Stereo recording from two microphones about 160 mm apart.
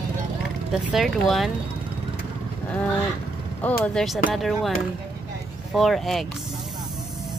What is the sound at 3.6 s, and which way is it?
Speech, 10° left (ahead or behind).